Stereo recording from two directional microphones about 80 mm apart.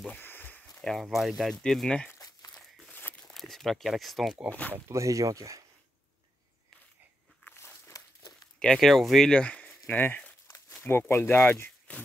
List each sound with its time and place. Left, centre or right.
0.2 s a sound: left
0.7 s a sound: centre
1.0 s speech: centre
2.1 s crumpling: left
2.9 s a sound: left
3.3 s speech: centre
4.5 s speech: centre
4.7 s speech: right
7.5 s dog: left
8.7 s speech: centre; by 11.7 s left